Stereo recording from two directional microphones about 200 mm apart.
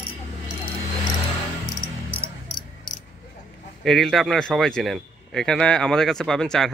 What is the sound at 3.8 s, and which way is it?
A man's voice, centre (ahead or behind).